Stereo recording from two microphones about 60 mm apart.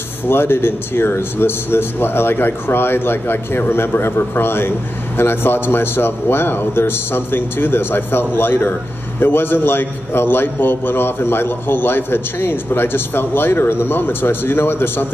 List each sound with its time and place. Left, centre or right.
0.3 s speech: left